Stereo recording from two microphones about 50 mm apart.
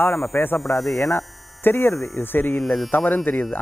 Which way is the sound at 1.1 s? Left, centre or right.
Left.